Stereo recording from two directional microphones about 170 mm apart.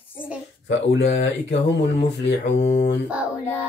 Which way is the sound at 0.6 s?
90° left.